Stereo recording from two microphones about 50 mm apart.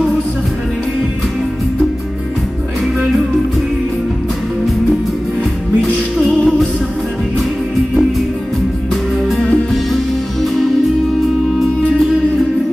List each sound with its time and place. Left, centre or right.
5.8 s music: centre